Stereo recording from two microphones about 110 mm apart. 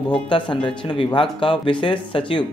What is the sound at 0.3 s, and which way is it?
Speech, 45° left (ahead or behind).